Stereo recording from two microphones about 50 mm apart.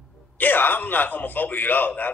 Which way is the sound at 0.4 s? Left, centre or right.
Left.